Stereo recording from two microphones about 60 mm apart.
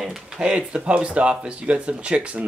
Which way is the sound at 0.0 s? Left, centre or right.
Centre.